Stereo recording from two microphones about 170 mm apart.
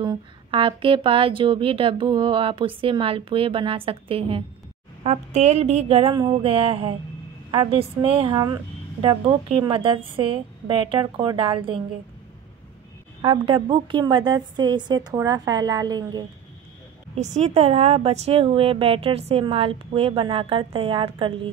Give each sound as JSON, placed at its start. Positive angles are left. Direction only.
{"t": 0.0, "sound": "a woman's voice", "side_deg": -30}
{"t": 13.2, "sound": "a woman's voice", "side_deg": -30}
{"t": 17.1, "sound": "a woman's voice", "side_deg": -40}